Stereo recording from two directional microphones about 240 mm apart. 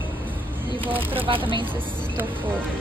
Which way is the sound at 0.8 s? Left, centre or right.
Right.